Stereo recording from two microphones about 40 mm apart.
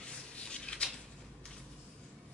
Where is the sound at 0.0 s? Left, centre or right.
Left.